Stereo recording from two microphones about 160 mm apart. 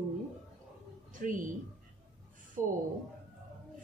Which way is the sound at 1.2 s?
55° right (ahead or behind).